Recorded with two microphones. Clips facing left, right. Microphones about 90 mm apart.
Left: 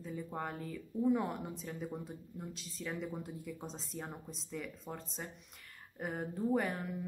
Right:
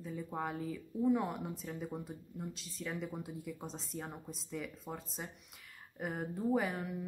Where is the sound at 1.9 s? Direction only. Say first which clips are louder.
Even; 15° right (ahead or behind).